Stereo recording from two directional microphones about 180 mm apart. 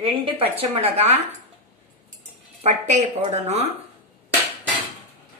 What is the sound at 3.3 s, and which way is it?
Speech, 35° right (ahead or behind).